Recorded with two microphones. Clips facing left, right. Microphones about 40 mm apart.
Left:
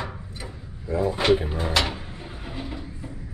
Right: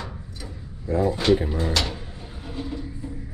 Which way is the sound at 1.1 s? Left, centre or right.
Left.